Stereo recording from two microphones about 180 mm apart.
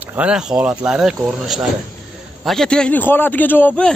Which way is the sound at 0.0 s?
10° right (ahead or behind).